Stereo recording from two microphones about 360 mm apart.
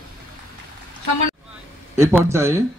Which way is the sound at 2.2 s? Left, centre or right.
Centre.